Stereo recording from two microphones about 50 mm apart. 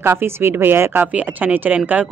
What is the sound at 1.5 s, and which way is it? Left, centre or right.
Speech, right.